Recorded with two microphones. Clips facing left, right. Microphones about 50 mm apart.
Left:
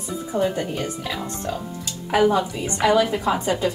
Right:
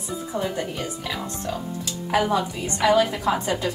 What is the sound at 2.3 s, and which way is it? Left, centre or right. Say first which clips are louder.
A woman's voice: left 2 dB; left.